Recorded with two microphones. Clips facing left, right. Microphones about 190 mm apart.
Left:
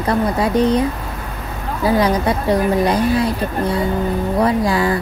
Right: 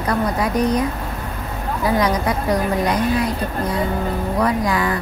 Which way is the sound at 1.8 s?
30° left (ahead or behind).